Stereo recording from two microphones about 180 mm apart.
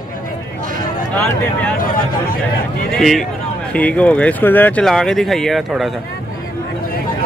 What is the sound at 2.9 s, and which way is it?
Speech, centre (ahead or behind).